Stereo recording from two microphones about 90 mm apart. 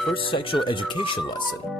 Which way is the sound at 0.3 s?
70° left (ahead or behind).